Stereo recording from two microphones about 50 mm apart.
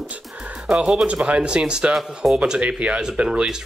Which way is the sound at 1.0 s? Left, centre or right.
Right.